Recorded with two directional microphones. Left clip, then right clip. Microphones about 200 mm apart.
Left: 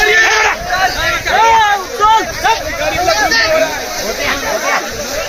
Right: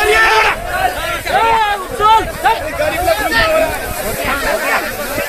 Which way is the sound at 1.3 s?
55° left (ahead or behind).